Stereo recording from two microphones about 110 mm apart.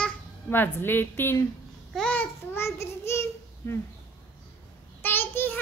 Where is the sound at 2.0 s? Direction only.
10° left (ahead or behind).